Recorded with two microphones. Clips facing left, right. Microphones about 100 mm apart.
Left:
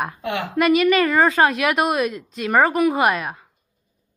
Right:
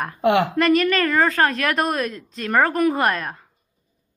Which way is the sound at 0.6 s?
10° left (ahead or behind).